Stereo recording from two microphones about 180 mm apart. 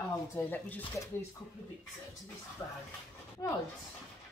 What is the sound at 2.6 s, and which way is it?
Speech, 15° left (ahead or behind).